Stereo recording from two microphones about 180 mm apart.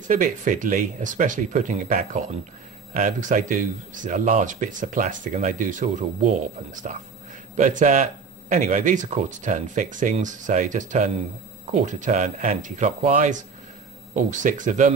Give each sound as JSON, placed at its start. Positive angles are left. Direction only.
{"t": 0.0, "sound": "speech", "side_deg": -45}